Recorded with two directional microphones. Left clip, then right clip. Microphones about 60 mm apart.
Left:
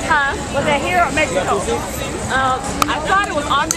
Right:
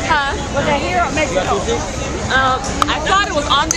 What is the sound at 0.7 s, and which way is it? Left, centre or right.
Speech, left.